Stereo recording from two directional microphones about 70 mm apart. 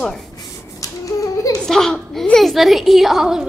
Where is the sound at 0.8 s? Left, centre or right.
Left.